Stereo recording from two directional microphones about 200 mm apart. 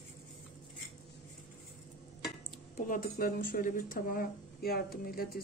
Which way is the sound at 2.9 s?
45° left (ahead or behind).